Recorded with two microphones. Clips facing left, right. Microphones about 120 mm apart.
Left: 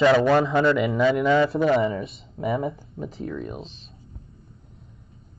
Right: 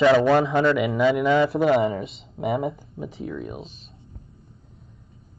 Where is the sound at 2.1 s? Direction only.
75° right (ahead or behind).